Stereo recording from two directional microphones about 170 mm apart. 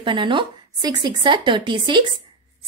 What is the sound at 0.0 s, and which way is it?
A woman's voice, 30° right (ahead or behind).